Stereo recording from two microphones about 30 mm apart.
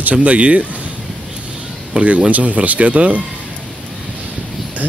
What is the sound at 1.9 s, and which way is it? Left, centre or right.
Speech, right.